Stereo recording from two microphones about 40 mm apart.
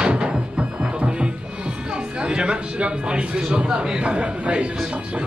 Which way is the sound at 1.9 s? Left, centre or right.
Right.